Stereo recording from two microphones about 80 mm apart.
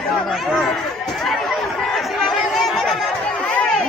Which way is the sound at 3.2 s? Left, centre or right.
Centre.